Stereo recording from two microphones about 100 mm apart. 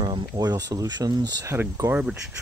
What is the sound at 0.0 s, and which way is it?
Speech, 45° right (ahead or behind).